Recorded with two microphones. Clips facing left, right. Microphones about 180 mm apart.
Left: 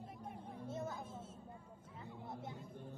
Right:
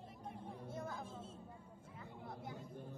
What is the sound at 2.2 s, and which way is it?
Music, 25° left (ahead or behind).